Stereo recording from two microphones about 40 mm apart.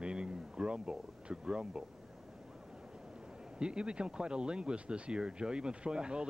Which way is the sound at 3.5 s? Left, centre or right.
Right.